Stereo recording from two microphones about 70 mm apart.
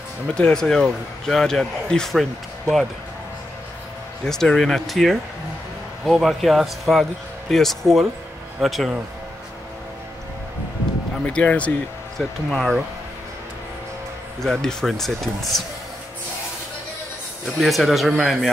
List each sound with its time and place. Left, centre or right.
0.3 s speech: centre
4.2 s a man's voice: centre
11.2 s speech: centre
12.2 s a man's voice: centre
14.4 s a man's voice: centre
17.6 s a man's voice: centre